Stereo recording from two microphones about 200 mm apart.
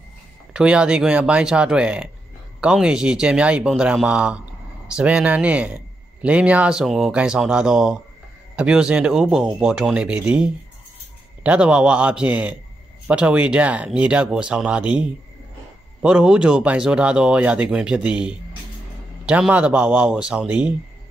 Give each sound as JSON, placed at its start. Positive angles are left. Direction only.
{"t": 0.5, "sound": "a man's voice", "side_deg": -5}